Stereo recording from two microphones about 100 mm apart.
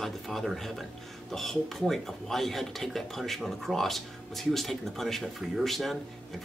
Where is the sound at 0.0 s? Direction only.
Centre (ahead or behind).